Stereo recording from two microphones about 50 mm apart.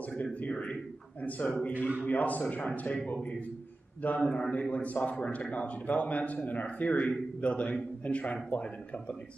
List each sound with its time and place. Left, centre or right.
0.1 s a sound: left
0.5 s a man's voice: left
4.2 s a man's voice: left